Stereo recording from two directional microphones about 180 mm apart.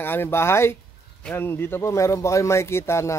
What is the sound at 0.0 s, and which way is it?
Speech, 10° left (ahead or behind).